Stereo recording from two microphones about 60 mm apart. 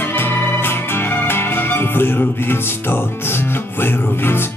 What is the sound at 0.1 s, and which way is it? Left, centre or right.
Music, left.